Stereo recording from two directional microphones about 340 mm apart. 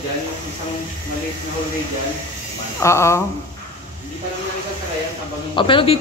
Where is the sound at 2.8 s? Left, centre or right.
Centre.